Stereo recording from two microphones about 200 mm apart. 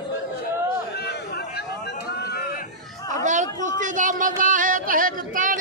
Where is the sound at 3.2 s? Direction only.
40° right (ahead or behind).